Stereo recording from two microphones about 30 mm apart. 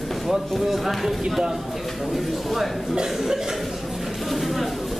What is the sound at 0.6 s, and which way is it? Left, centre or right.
A man's voice, centre.